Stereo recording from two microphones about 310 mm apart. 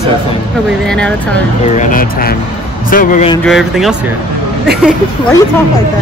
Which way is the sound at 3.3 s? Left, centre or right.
Centre.